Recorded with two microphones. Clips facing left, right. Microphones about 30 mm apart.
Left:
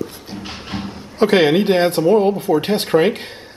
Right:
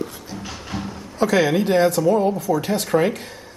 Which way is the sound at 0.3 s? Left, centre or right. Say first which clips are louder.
Left 2 dB; left.